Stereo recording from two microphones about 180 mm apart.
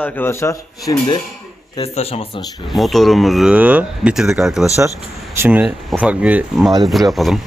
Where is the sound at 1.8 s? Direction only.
35° left (ahead or behind).